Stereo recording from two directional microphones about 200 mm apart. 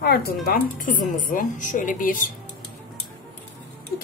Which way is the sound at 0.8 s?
40° left (ahead or behind).